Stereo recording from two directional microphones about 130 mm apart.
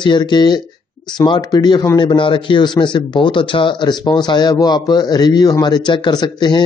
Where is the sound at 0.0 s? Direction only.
35° left (ahead or behind).